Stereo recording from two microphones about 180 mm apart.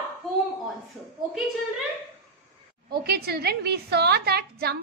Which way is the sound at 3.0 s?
60° right (ahead or behind).